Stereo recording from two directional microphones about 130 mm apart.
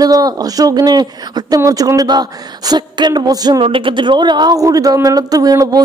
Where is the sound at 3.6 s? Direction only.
40° right (ahead or behind).